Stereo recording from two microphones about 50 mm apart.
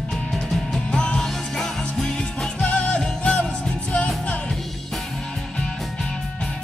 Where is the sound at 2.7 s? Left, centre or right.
Left.